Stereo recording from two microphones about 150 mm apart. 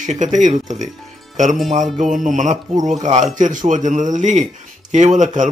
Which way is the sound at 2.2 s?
55° right (ahead or behind).